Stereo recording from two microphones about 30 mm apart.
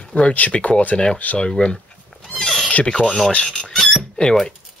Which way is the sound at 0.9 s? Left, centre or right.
Left.